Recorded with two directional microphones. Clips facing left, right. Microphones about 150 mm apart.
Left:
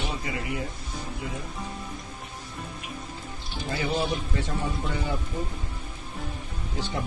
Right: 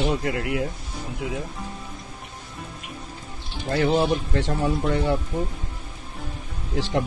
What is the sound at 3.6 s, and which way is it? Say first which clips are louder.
Speech: right 7 dB; 65° right (ahead or behind).